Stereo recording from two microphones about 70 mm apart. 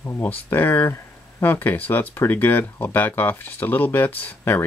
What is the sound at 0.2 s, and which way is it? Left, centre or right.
Speech, left.